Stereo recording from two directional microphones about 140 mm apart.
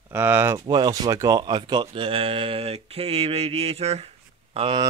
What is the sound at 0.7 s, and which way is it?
Speech, 30° right (ahead or behind).